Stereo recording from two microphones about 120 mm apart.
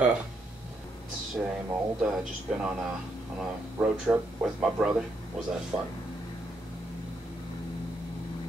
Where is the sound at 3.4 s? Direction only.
10° right (ahead or behind).